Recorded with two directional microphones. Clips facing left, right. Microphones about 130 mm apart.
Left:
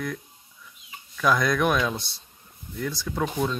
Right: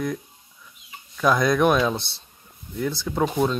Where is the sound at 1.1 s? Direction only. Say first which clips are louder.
Right 3 dB; 25° right (ahead or behind).